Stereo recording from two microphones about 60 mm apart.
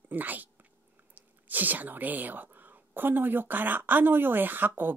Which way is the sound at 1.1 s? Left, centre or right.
Right.